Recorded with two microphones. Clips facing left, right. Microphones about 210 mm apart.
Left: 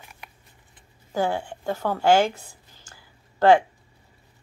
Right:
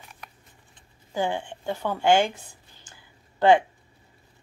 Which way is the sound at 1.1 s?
40° left (ahead or behind).